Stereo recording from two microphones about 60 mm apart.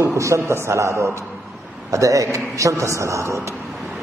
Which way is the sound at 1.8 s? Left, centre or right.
Right.